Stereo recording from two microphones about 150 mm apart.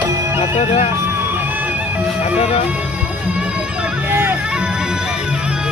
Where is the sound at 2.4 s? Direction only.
40° left (ahead or behind).